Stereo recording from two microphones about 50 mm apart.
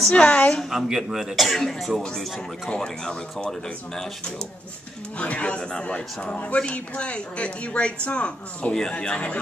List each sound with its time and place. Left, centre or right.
0.1 s a man's voice: left
0.7 s speech: centre
2.7 s speech: centre
5.2 s a man's voice: left